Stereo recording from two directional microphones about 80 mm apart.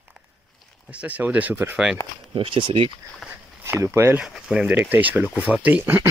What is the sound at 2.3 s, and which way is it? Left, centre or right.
Speech, right.